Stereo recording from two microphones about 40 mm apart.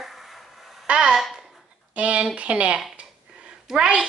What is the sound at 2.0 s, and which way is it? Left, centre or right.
Speech, right.